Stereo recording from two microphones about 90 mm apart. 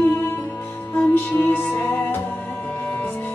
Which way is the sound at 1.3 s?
20° left (ahead or behind).